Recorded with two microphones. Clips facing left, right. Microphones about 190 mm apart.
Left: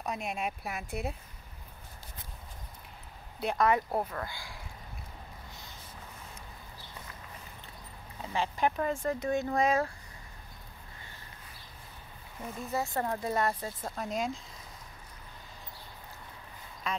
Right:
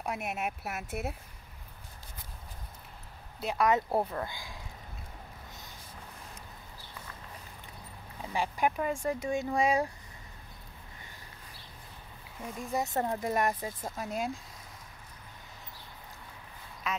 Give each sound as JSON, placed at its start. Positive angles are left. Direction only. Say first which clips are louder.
{"t": 0.0, "sound": "speech", "louder": "even", "side_deg": -5}
{"t": 3.3, "sound": "speech", "louder": "left 1 dB", "side_deg": 0}
{"t": 3.6, "sound": "speech", "louder": "right 1 dB", "side_deg": -20}
{"t": 8.2, "sound": "speech", "louder": "even", "side_deg": -10}
{"t": 12.7, "sound": "speech", "louder": "right 1 dB", "side_deg": -20}